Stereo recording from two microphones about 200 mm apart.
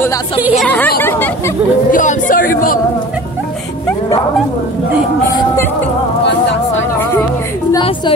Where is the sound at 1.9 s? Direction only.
40° left (ahead or behind).